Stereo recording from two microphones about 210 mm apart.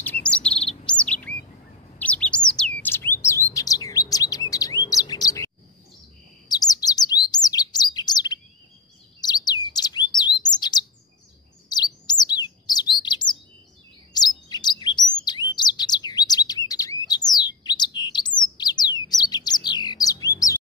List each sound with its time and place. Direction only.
0.0 s chirp: 5° left (ahead or behind)
2.0 s bird: 5° left (ahead or behind)
6.5 s bird: 20° left (ahead or behind)
9.2 s chirp: 20° left (ahead or behind)
13.0 s bird: 20° left (ahead or behind)
14.1 s chirp: 20° left (ahead or behind)
17.1 s bird: 20° left (ahead or behind)